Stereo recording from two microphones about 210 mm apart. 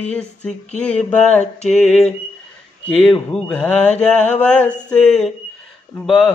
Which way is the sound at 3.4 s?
5° left (ahead or behind).